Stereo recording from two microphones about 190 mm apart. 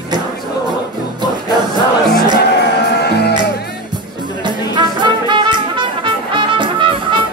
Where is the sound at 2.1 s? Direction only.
60° left (ahead or behind).